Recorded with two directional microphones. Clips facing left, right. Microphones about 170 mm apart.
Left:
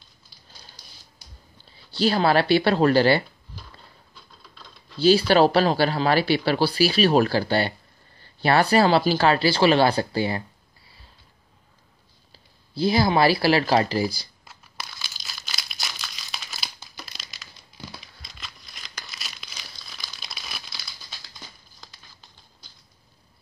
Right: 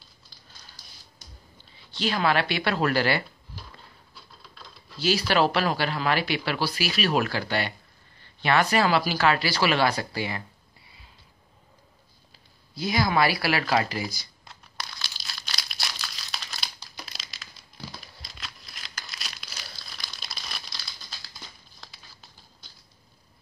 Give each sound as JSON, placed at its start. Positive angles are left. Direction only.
{"t": 1.9, "sound": "speech", "side_deg": 35}
{"t": 4.1, "sound": "typing", "side_deg": -5}
{"t": 5.0, "sound": "speech", "side_deg": 30}
{"t": 12.7, "sound": "speech", "side_deg": 30}
{"t": 14.4, "sound": "crumpling", "side_deg": 5}